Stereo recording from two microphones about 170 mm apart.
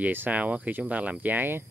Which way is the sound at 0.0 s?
10° right (ahead or behind).